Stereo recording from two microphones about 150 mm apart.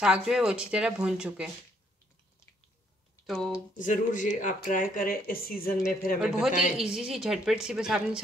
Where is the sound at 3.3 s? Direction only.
5° left (ahead or behind).